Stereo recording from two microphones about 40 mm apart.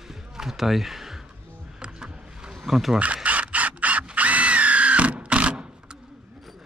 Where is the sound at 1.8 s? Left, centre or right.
Right.